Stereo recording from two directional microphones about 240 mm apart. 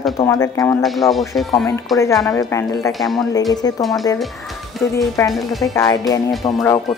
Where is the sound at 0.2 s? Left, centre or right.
Centre.